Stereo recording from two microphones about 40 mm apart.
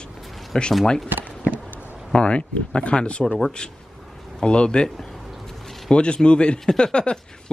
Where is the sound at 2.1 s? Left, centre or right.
Left.